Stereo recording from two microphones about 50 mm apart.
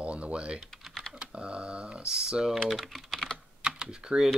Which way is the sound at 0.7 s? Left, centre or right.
Centre.